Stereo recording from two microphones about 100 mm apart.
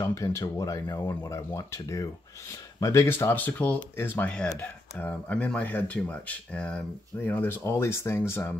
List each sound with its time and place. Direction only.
0.0 s speech: 30° left (ahead or behind)